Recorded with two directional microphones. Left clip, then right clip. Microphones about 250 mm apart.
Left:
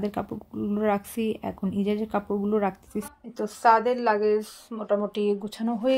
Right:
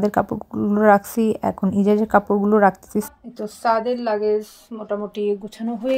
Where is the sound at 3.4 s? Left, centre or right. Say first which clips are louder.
Even; centre.